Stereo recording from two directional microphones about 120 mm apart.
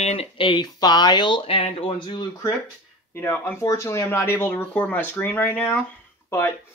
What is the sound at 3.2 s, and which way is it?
Speech, 20° left (ahead or behind).